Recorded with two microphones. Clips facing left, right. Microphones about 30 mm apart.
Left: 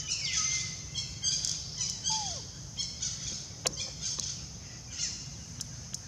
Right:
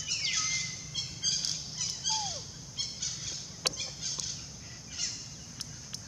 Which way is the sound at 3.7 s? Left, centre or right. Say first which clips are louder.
Even; centre.